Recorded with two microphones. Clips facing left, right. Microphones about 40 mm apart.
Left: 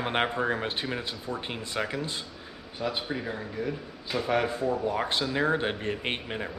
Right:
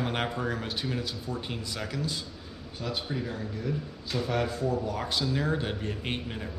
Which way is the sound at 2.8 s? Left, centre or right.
Centre.